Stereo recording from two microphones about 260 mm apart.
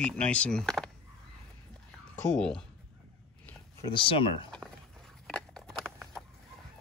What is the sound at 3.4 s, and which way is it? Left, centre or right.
Speech, centre.